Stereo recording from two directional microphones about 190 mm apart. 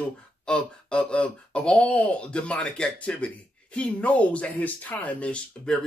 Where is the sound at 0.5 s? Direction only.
5° left (ahead or behind).